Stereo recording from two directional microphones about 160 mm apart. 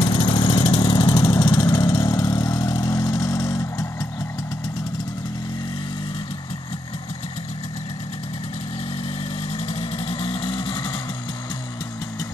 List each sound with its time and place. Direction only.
0.0 s vehicle: 35° left (ahead or behind)
9.5 s vehicle: 40° left (ahead or behind)